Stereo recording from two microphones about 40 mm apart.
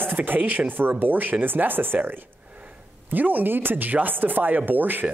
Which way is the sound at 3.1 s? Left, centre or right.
Right.